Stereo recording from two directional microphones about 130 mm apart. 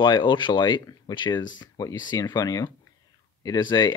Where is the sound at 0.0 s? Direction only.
40° left (ahead or behind).